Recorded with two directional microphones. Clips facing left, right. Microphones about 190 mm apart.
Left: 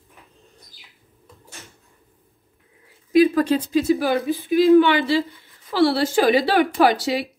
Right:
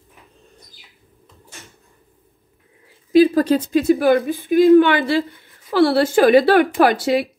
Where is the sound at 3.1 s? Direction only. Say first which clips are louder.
Right 3 dB; 35° right (ahead or behind).